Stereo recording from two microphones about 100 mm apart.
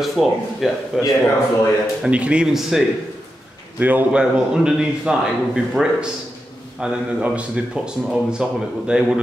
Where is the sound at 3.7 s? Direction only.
15° right (ahead or behind).